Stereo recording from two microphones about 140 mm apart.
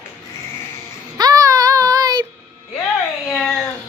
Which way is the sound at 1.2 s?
25° right (ahead or behind).